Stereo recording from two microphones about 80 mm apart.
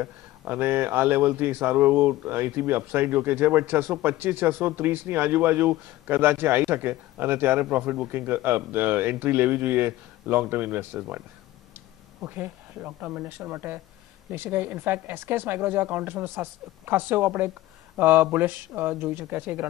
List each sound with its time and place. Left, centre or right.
0.0 s speech: right